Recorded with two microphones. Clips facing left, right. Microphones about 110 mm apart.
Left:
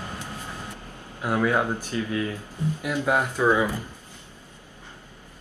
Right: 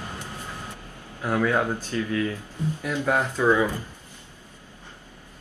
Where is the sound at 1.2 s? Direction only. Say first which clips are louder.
Even; 15° left (ahead or behind).